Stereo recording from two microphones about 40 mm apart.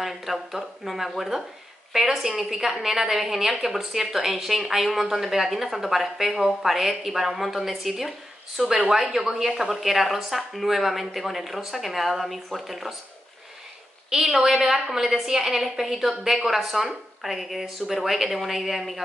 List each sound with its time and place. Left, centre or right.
0.0 s a woman's voice: centre
8.5 s a woman's voice: centre
14.1 s a woman's voice: centre
14.5 s a woman's voice: centre